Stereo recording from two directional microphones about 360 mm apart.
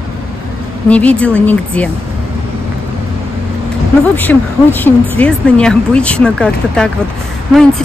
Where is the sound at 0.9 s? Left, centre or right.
Centre.